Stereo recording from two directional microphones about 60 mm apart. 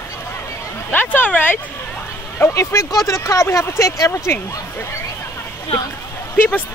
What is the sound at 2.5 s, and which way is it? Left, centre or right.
Speech, left.